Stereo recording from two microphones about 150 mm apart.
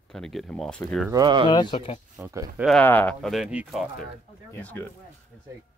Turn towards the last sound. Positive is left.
turn(degrees=10)  # may be behind; listen again after turning